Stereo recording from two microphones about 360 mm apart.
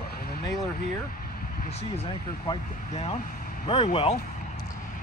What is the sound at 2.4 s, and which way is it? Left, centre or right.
Speech, centre.